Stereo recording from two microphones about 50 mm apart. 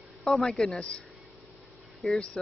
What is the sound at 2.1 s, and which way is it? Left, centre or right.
Speech, centre.